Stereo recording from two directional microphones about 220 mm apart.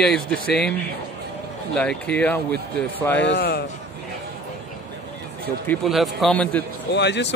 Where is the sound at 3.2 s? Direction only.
50° left (ahead or behind).